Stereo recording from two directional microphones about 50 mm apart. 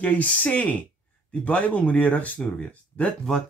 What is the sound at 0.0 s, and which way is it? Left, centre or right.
Speech, left.